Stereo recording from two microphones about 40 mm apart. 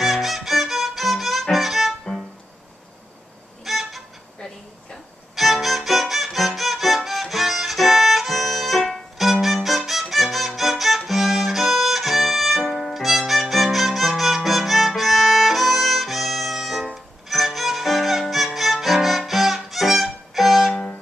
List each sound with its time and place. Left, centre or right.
0.0 s music: centre
3.6 s violin: centre
5.3 s violin: centre
12.9 s music: centre
17.3 s violin: centre